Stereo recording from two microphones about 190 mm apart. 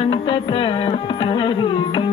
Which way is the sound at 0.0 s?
30° left (ahead or behind).